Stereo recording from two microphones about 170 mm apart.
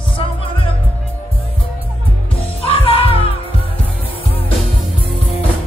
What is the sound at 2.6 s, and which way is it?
Music, 35° left (ahead or behind).